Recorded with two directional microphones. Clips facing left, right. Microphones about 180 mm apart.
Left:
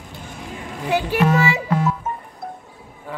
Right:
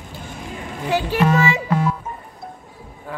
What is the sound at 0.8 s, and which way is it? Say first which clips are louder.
Speech: even; 15° left (ahead or behind).